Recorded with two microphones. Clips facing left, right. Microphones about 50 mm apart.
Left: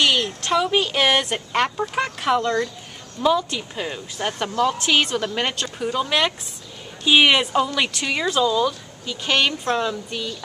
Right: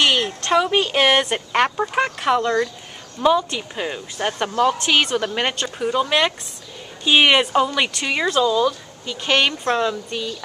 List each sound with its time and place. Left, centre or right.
0.0 s a sound: centre
0.5 s a woman's voice: centre
4.5 s a woman's voice: right
4.7 s a woman's voice: centre